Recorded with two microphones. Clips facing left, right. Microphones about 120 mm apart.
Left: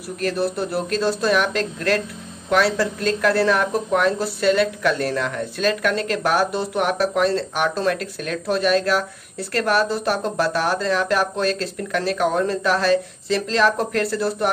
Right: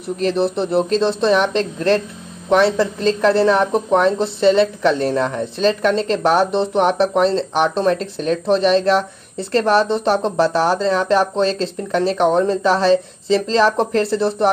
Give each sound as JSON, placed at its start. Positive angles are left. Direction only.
{"t": 0.2, "sound": "a woman's voice", "side_deg": -25}